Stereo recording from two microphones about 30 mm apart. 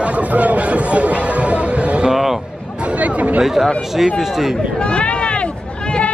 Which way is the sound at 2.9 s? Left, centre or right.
Right.